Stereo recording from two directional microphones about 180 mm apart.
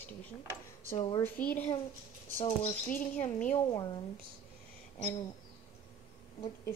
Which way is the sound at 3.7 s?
25° left (ahead or behind).